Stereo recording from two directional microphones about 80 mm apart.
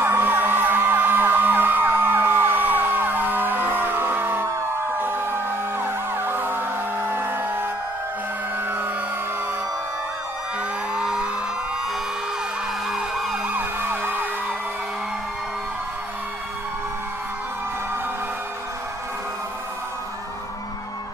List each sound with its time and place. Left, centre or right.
0.0 s a sound: right
5.0 s emergency vehicle: right
8.5 s fire engine: right
11.0 s music: centre
12.8 s emergency vehicle: centre
13.5 s emergency vehicle: right